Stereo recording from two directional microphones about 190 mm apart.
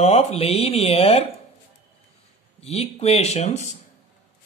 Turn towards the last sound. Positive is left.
turn(degrees=35)  # may be behind; listen again after turning